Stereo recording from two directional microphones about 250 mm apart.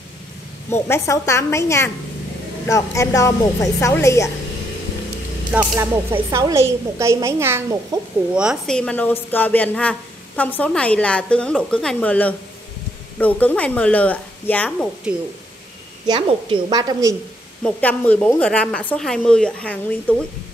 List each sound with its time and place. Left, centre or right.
0.7 s a woman's voice: centre
5.5 s speech: centre
16.1 s a woman's voice: right
17.6 s speech: centre